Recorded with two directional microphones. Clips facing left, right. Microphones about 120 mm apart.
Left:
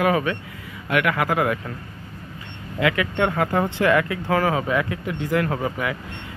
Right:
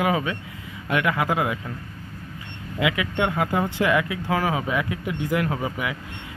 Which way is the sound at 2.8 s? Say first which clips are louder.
Left 2 dB; 10° right (ahead or behind).